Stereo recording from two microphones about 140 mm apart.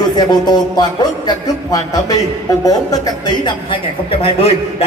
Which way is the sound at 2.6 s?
25° left (ahead or behind).